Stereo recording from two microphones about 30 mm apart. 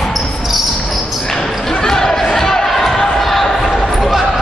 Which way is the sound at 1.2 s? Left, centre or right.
Centre.